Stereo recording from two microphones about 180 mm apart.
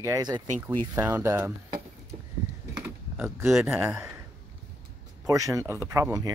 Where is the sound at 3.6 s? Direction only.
15° right (ahead or behind).